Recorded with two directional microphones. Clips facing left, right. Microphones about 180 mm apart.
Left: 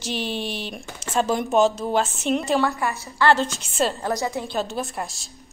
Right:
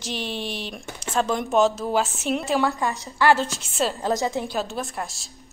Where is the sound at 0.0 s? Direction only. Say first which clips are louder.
Left 2 dB; centre (ahead or behind).